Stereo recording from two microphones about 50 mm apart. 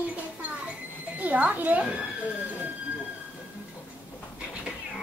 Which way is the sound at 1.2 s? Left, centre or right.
Right.